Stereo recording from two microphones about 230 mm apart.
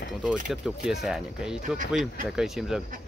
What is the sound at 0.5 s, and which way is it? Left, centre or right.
Speech, centre.